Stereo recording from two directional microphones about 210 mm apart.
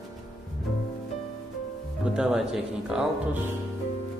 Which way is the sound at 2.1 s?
5° right (ahead or behind).